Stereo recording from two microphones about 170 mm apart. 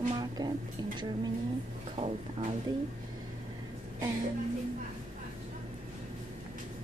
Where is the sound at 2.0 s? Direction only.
40° right (ahead or behind).